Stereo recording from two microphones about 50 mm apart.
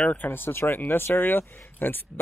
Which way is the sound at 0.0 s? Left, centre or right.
Left.